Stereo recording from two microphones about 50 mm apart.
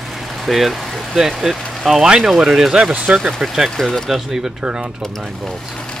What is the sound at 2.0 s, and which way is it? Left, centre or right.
Speech, centre.